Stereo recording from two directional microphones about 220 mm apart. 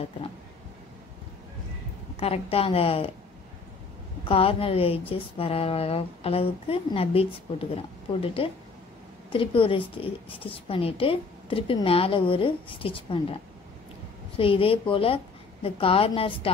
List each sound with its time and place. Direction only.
2.1 s a woman's voice: 25° left (ahead or behind)
4.2 s a woman's voice: 25° left (ahead or behind)
14.3 s a woman's voice: 25° left (ahead or behind)